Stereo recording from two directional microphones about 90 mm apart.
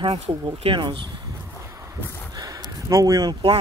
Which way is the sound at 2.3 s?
45° right (ahead or behind).